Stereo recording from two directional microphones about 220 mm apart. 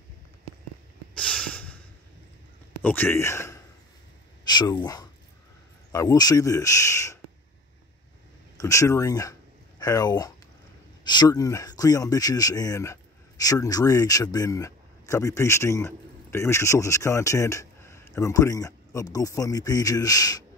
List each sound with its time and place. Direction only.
1.1 s snort: 5° left (ahead or behind)
2.8 s speech: 10° left (ahead or behind)
8.5 s speech: 15° left (ahead or behind)